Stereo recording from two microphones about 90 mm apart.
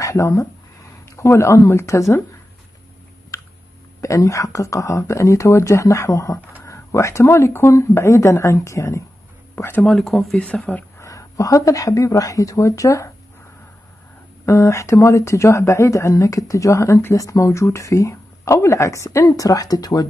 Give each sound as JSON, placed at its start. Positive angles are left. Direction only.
{"t": 0.0, "sound": "speech", "side_deg": 35}
{"t": 4.0, "sound": "speech", "side_deg": 35}
{"t": 9.8, "sound": "speech", "side_deg": 5}
{"t": 10.3, "sound": "speech", "side_deg": 15}
{"t": 11.0, "sound": "speech", "side_deg": 40}
{"t": 14.4, "sound": "speech", "side_deg": 35}